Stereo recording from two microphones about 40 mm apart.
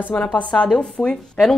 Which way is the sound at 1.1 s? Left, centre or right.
Centre.